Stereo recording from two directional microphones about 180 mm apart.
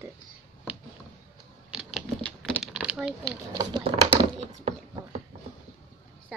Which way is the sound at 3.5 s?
25° right (ahead or behind).